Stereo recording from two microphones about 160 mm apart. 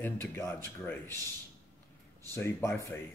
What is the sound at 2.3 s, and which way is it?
Speech, 15° left (ahead or behind).